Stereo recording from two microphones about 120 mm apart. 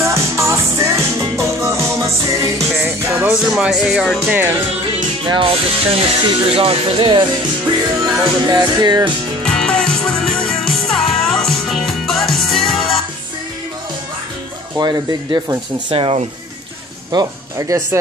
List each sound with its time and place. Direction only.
0.0 s music: 25° right (ahead or behind)
2.8 s music: 15° right (ahead or behind)
3.4 s speech: 5° right (ahead or behind)
5.2 s speech: 45° right (ahead or behind)
9.4 s music: 5° left (ahead or behind)
14.8 s speech: 35° right (ahead or behind)
15.9 s speech: 45° right (ahead or behind)
17.1 s speech: 30° right (ahead or behind)